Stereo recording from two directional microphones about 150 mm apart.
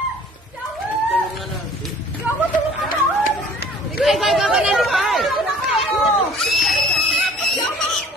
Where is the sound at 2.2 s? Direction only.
10° right (ahead or behind).